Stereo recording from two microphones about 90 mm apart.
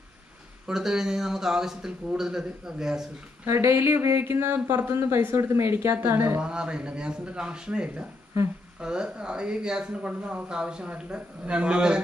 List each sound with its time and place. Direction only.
0.7 s speech: 5° right (ahead or behind)
3.4 s a woman's voice: 30° right (ahead or behind)
6.4 s speech: 10° right (ahead or behind)